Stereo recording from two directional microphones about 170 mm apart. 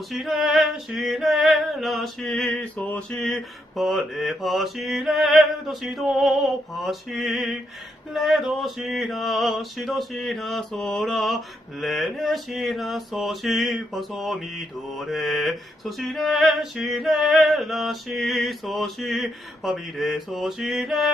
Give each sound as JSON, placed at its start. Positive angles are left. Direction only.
{"t": 0.1, "sound": "male singing", "side_deg": 0}